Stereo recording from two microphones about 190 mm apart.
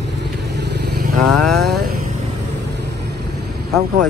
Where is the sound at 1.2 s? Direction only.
Centre (ahead or behind).